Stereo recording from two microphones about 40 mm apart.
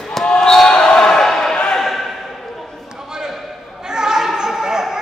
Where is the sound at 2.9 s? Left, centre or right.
Centre.